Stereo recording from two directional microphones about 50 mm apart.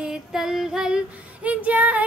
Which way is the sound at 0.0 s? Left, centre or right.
Centre.